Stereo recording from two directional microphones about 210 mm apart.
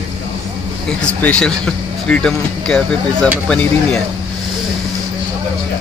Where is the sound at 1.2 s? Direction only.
5° left (ahead or behind).